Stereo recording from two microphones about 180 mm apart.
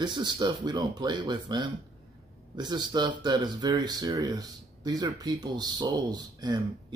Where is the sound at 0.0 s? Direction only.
25° right (ahead or behind).